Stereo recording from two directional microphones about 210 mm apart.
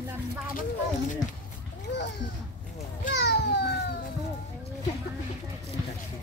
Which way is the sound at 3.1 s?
55° left (ahead or behind).